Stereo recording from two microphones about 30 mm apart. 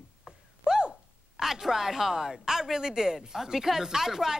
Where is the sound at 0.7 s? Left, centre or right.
Right.